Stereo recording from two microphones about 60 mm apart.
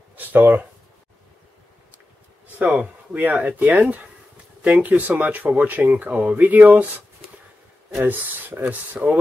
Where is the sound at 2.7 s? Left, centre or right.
Right.